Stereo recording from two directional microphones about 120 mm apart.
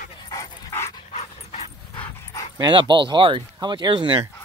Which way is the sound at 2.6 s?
40° right (ahead or behind).